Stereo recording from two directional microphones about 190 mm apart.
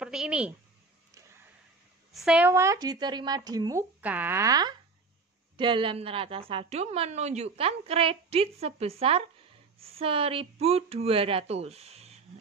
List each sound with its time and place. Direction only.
0.0 s a woman's voice: 5° right (ahead or behind)
2.1 s speech: 5° right (ahead or behind)
4.0 s a woman's voice: 10° right (ahead or behind); by 12.2 s 35° right (ahead or behind)